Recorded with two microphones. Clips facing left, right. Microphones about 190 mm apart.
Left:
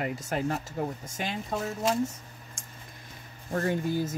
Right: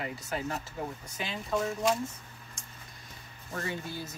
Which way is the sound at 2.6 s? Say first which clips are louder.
Left 2 dB; 50° left (ahead or behind).